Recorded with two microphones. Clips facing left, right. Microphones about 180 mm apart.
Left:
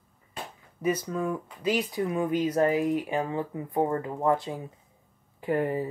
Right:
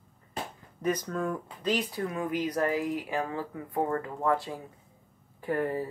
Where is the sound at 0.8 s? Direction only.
10° left (ahead or behind).